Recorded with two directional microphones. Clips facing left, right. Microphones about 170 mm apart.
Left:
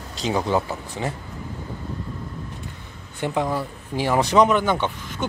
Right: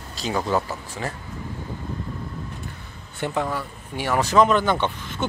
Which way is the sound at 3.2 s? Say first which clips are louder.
Left 2 dB; 15° left (ahead or behind).